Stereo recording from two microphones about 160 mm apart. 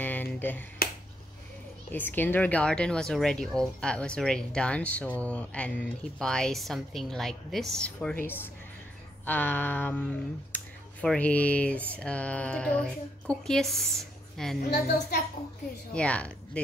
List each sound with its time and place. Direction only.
0.0 s finger snapping: 10° left (ahead or behind)
1.9 s speech: 10° left (ahead or behind)
9.2 s speech: 10° left (ahead or behind)
14.7 s a woman's voice: 75° left (ahead or behind)
15.9 s a woman's voice: 5° left (ahead or behind)